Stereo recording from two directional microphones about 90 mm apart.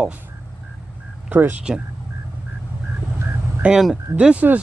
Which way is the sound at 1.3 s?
20° right (ahead or behind).